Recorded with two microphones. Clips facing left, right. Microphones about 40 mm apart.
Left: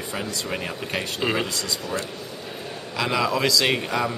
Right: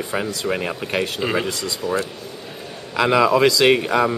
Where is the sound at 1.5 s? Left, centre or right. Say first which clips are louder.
Right 3 dB; right.